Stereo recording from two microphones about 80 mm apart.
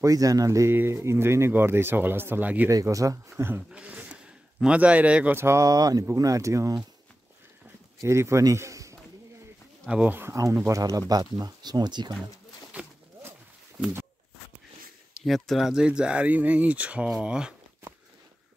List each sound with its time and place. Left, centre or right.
0.0 s speech: right
2.7 s speech: right
3.3 s speech: right
3.7 s a sound: centre
5.3 s speech: right
5.7 s speech: right
8.0 s a man's voice: right
9.8 s speech: centre
10.4 s speech: right
15.2 s speech: centre